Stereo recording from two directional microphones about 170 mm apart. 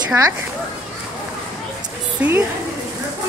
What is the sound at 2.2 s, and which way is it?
Speech, 10° right (ahead or behind).